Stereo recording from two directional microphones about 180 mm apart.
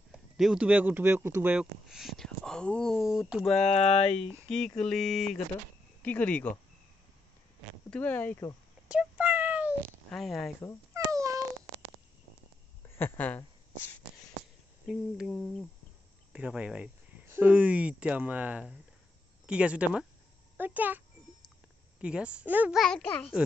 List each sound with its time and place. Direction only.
0.4 s speech: 5° right (ahead or behind)
3.6 s speech: 40° left (ahead or behind)
4.5 s speech: 5° left (ahead or behind)
7.9 s speech: 10° left (ahead or behind)
8.8 s meow: 10° right (ahead or behind)
10.1 s speech: centre (ahead or behind)
10.9 s a sound: 15° right (ahead or behind)
12.8 s speech: 10° left (ahead or behind)
14.9 s a child's voice: centre (ahead or behind)
22.0 s speech: 5° right (ahead or behind)